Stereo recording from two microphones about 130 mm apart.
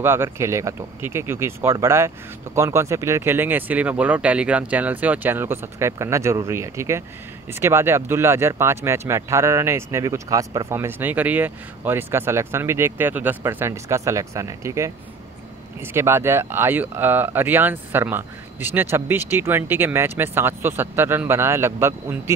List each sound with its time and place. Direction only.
0.0 s speech: 20° right (ahead or behind)